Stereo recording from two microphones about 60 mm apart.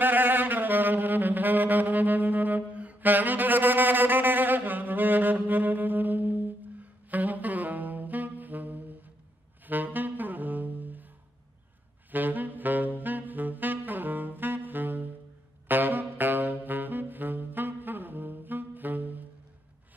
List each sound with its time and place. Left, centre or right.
0.0 s saxophone: right
12.1 s saxophone: right